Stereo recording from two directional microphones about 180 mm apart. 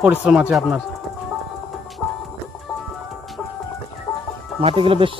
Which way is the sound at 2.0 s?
5° left (ahead or behind).